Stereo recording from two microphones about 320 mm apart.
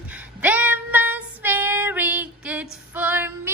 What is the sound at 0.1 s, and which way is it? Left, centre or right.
Female singing, centre.